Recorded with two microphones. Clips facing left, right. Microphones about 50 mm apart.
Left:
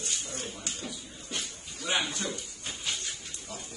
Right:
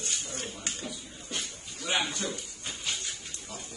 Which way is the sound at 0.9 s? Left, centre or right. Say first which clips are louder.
Even; centre.